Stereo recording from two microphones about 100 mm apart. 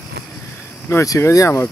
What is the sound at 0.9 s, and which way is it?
Speech, 30° left (ahead or behind).